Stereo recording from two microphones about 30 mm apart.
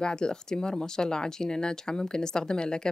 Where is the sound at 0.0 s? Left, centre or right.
Left.